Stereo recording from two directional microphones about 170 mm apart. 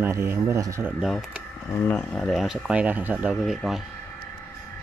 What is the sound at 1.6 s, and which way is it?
Speech, 10° left (ahead or behind).